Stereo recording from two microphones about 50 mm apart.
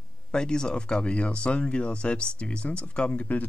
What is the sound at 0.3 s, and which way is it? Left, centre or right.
Speech, centre.